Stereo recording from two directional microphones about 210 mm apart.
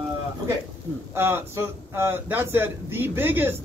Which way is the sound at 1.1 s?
10° right (ahead or behind).